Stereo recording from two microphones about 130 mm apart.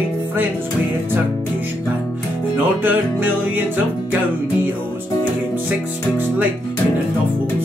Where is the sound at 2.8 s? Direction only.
15° right (ahead or behind).